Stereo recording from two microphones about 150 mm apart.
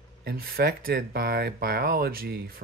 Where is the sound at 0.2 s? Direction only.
90° right.